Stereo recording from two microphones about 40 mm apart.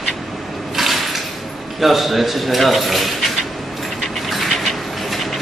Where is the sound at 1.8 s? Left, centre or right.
Centre.